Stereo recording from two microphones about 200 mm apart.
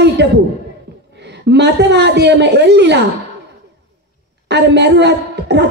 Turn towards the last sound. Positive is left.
turn(degrees=-60)  # may be behind; listen again after turning